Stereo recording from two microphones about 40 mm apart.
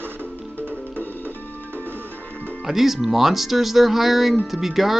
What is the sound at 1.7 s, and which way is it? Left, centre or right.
Music, right.